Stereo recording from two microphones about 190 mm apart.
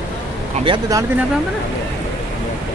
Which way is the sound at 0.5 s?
30° right (ahead or behind).